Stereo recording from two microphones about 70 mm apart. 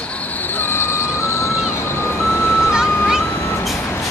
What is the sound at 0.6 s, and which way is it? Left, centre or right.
Vehicle, left.